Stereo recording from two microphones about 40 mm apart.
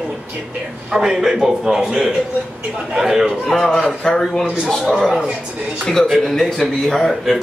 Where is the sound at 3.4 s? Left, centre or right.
Centre.